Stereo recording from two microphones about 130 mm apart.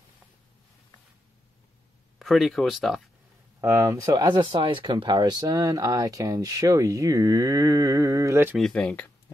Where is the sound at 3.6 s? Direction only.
25° right (ahead or behind).